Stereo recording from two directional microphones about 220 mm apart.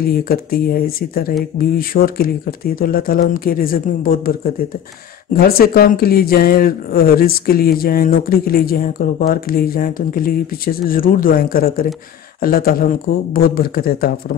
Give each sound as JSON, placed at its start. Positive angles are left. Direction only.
{"t": 0.3, "sound": "speech", "side_deg": 45}
{"t": 5.3, "sound": "speech", "side_deg": 45}